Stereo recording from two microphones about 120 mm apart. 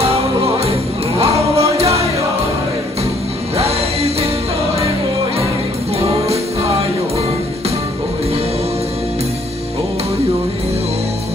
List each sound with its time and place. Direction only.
1.5 s music: 60° right (ahead or behind)
3.5 s music: 60° right (ahead or behind)